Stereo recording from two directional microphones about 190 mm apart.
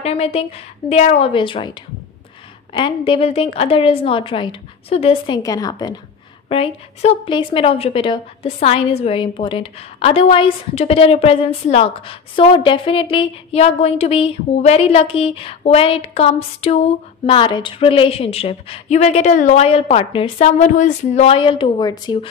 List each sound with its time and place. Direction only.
0.0 s a woman's voice: 35° left (ahead or behind)
6.5 s a woman's voice: 30° left (ahead or behind)